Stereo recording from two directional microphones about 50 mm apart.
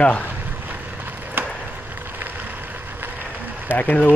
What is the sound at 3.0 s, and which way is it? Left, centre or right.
Vehicle, right.